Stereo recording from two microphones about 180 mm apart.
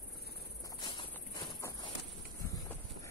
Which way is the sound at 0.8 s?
20° left (ahead or behind).